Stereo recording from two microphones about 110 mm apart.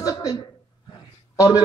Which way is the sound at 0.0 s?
35° left (ahead or behind).